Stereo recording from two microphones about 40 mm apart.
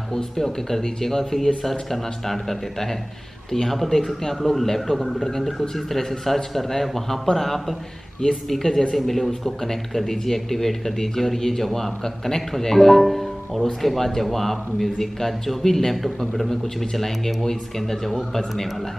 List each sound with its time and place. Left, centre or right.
0.1 s a man's voice: centre